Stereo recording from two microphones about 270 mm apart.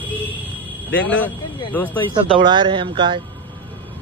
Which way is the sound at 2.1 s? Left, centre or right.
Centre.